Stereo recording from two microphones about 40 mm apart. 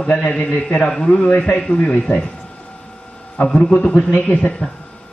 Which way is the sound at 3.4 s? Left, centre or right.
Left.